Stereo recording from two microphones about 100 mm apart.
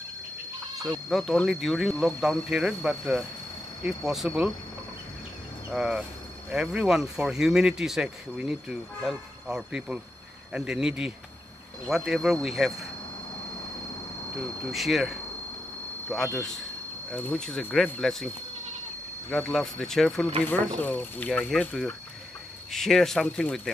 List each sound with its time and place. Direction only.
0.7 s speech: centre (ahead or behind)
5.7 s speech: 5° right (ahead or behind)
14.4 s speech: centre (ahead or behind)
20.4 s speech: 20° left (ahead or behind)
21.5 s speech: 5° left (ahead or behind)